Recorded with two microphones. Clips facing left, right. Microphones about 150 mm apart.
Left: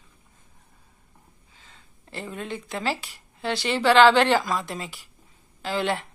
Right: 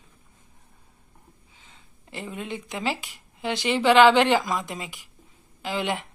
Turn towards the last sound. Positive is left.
turn(degrees=-15)  # may be behind; listen again after turning